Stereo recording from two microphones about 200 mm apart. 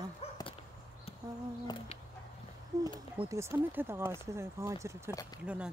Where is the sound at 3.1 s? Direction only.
15° right (ahead or behind).